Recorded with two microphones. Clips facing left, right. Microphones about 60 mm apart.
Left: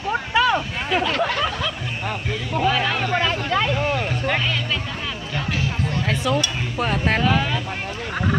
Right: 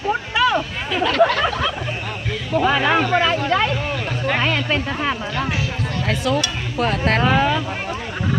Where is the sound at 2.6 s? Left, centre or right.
Right.